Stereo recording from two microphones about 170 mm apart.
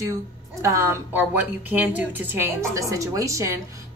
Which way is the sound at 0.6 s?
20° right (ahead or behind).